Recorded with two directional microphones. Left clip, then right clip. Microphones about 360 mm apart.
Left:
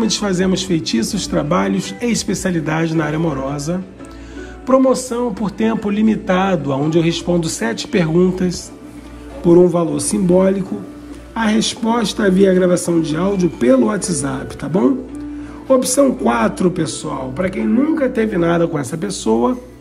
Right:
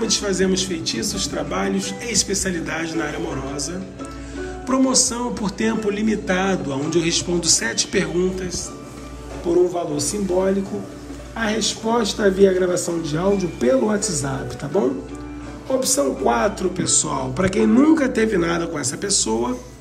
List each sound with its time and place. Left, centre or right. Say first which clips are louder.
0.0 s a man's voice: left 2 dB; centre
15.8 s speech: left 5 dB; centre
16.8 s a man's voice: right 1 dB; centre